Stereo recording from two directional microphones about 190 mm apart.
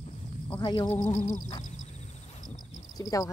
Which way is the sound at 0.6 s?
20° left (ahead or behind).